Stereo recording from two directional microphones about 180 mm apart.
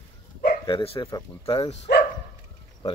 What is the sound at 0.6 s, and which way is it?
Speech, 30° left (ahead or behind).